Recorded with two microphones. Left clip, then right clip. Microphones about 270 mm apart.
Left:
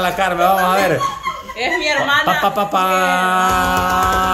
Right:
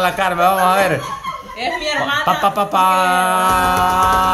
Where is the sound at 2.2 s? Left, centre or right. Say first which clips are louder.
Even; centre.